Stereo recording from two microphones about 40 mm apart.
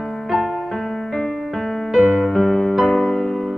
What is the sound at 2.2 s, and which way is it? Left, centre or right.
Music, centre.